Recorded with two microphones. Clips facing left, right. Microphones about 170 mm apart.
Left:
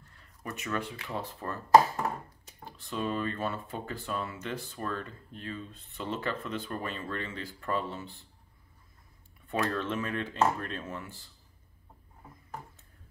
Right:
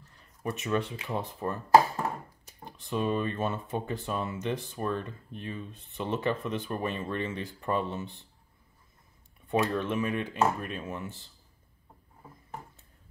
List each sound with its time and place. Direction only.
0.2 s speech: 25° right (ahead or behind)
2.6 s speech: 20° right (ahead or behind)
9.5 s speech: 15° right (ahead or behind)